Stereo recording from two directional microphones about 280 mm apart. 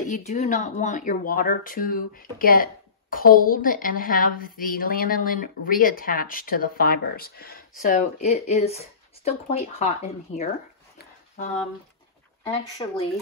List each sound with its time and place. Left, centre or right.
0.0 s speech: left
12.7 s speech: left